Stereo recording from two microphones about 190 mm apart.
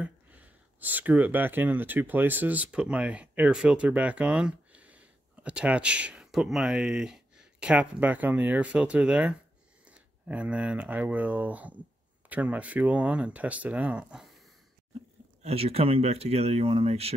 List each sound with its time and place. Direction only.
0.0 s speech: 5° right (ahead or behind)
15.4 s speech: 30° right (ahead or behind)